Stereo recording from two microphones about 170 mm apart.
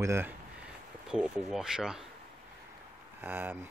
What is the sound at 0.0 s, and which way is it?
Speech, 15° right (ahead or behind).